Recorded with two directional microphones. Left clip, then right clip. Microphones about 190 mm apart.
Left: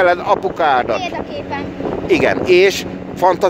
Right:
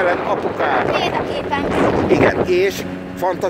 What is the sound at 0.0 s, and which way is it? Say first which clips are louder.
Speech: left 4 dB; 45° left (ahead or behind).